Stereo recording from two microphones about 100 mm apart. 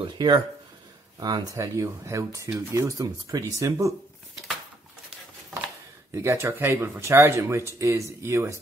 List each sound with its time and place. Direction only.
0.0 s speech: 50° right (ahead or behind)
1.2 s speech: 40° right (ahead or behind)
6.1 s speech: 25° right (ahead or behind)